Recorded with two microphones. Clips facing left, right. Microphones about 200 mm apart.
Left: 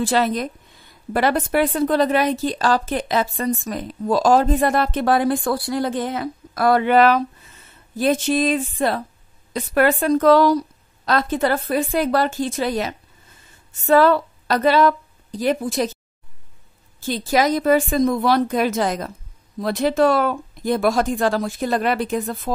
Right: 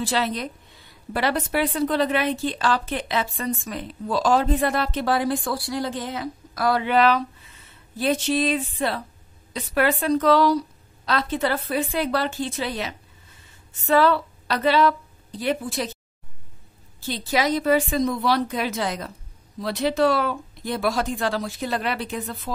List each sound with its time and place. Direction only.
0.0 s a woman's voice: 50° left (ahead or behind)
17.0 s speech: 45° left (ahead or behind)